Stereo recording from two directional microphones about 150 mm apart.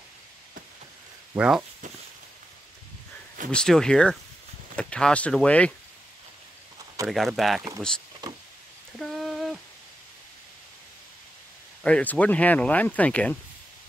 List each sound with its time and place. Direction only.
1.3 s speech: 10° right (ahead or behind)
3.5 s speech: 5° left (ahead or behind)
7.1 s speech: centre (ahead or behind)
8.9 s a sound: centre (ahead or behind)
11.8 s speech: 10° left (ahead or behind)